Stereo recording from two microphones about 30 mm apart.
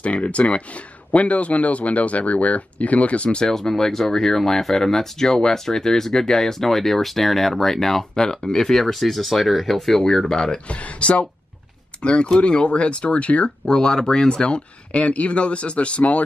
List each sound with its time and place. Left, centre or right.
0.0 s speech: left
3.3 s speech: left
3.5 s speech: centre
8.7 s speech: centre
10.0 s speech: centre
10.7 s speech: left
13.7 s speech: left